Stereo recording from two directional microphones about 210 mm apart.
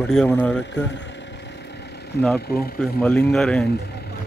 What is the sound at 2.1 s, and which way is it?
Speech, 50° left (ahead or behind).